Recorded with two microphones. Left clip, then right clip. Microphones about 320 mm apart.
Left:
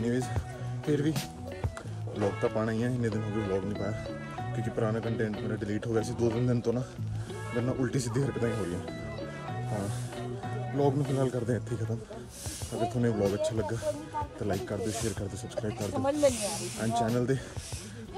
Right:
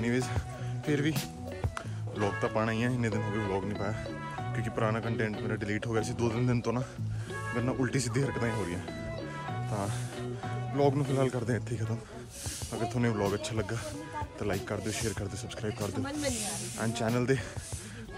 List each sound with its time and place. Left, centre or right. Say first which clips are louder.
0.0 s speech: even; centre
0.8 s music: left 1 dB; centre
2.1 s speech: left 1 dB; centre
9.2 s music: even; centre
12.7 s speech: left 2 dB; centre